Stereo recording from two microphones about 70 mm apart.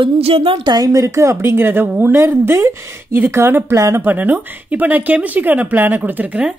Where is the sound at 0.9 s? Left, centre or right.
Right; by 6.5 s centre.